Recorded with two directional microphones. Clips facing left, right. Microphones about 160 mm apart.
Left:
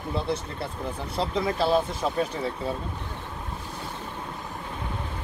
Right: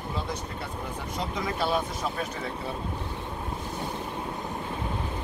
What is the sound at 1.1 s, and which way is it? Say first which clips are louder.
Speech: left 5 dB; 30° left (ahead or behind).